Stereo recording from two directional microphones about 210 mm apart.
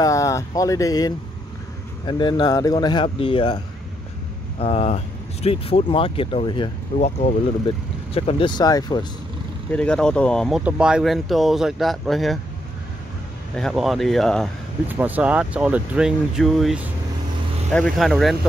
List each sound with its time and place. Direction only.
0.0 s speech: 15° left (ahead or behind)
4.6 s speech: 25° left (ahead or behind)
9.7 s speech: 5° left (ahead or behind)
13.6 s speech: centre (ahead or behind)
14.9 s speech: 10° right (ahead or behind)